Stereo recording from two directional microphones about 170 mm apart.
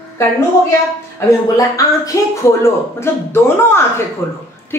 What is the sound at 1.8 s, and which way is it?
A woman's voice, 20° left (ahead or behind).